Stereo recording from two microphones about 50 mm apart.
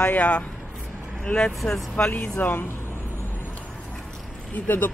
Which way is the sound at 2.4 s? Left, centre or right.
Left.